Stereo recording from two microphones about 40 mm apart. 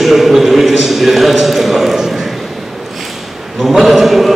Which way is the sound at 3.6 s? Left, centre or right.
Centre.